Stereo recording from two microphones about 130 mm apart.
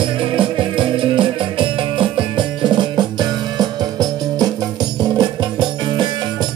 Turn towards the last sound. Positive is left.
turn(degrees=-35)  # may be behind; listen again after turning